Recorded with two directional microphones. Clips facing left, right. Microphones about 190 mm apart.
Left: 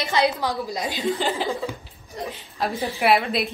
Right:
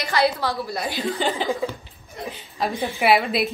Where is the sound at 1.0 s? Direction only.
Centre (ahead or behind).